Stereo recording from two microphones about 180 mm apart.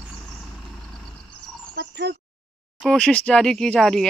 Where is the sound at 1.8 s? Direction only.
65° right (ahead or behind).